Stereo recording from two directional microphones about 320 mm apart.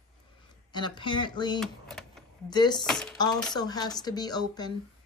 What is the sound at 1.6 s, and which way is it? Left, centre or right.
Speech, centre.